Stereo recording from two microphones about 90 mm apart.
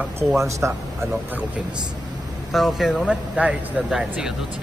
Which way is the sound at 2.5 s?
5° right (ahead or behind).